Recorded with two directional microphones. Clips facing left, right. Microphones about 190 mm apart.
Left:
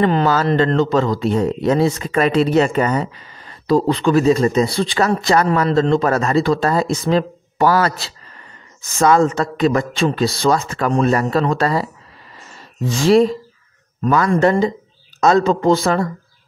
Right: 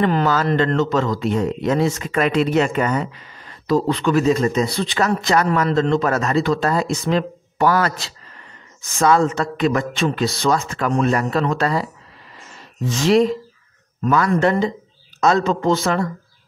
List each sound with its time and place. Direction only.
0.0 s speech: 30° left (ahead or behind)